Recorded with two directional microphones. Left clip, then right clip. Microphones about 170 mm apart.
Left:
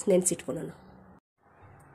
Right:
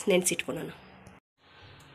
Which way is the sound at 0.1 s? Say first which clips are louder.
Left 1 dB; 30° left (ahead or behind).